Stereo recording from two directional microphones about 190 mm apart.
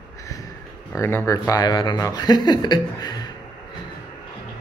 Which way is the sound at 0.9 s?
15° left (ahead or behind).